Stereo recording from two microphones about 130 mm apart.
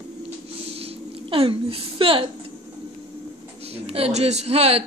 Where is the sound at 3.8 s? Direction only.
50° right (ahead or behind).